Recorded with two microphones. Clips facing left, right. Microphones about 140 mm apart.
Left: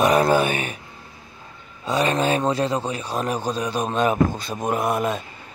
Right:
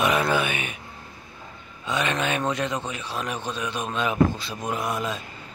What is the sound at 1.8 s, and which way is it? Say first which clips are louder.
A man's voice: left 5 dB; 35° left (ahead or behind).